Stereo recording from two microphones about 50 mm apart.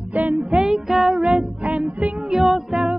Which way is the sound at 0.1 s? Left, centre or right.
Right.